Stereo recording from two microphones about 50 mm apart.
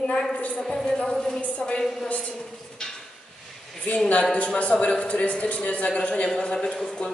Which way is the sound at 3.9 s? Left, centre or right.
Left.